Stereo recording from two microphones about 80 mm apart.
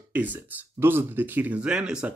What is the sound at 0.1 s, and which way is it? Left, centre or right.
Speech, right.